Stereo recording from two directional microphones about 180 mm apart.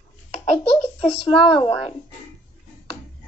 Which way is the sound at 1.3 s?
30° left (ahead or behind).